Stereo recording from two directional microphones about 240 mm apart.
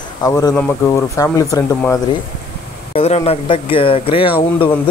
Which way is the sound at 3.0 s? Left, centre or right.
Left.